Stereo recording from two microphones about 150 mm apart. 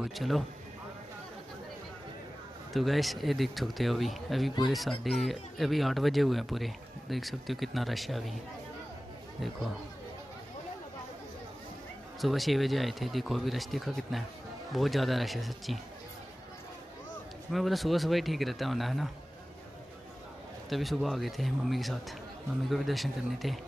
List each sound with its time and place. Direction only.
0.0 s speech: centre (ahead or behind)
2.7 s speech: centre (ahead or behind)
12.2 s speech: centre (ahead or behind)
17.5 s speech: centre (ahead or behind)
20.7 s speech: centre (ahead or behind)